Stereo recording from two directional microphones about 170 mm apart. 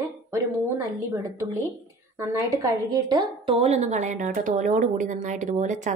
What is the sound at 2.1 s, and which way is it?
A woman's voice, 20° right (ahead or behind).